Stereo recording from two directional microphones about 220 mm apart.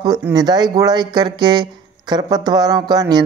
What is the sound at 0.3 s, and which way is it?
Speech, 20° right (ahead or behind).